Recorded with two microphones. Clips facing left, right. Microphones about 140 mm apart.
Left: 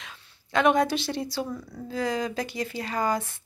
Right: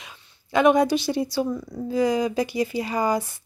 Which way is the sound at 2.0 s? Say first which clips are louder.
Right 6 dB; 5° right (ahead or behind).